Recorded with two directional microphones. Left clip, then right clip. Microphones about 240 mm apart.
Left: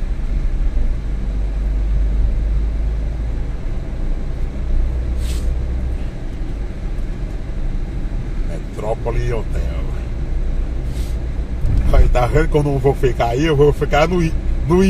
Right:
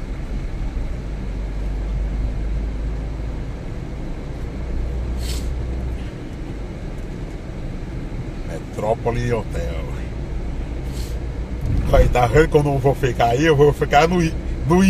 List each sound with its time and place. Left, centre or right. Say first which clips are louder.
9.1 s a man's voice: right 2 dB; right
11.9 s a man's voice: right 3 dB; centre